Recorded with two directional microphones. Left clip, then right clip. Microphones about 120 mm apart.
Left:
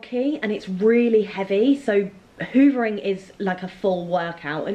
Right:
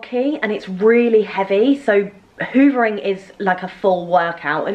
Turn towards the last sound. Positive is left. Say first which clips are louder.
# right 8 dB
turn(degrees=-15)  # may be behind; listen again after turning